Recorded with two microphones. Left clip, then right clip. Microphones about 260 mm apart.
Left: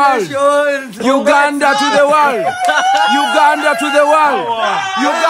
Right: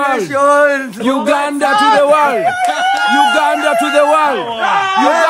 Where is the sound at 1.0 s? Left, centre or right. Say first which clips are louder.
Left 4 dB; centre.